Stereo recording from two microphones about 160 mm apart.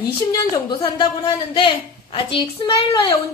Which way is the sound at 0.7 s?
30° left (ahead or behind).